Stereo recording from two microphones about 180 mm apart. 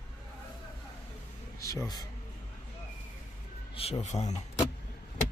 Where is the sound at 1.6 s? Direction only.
20° left (ahead or behind).